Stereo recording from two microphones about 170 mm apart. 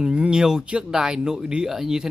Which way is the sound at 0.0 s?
5° right (ahead or behind).